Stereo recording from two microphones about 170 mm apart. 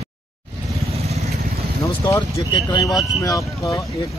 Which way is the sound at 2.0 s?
25° left (ahead or behind).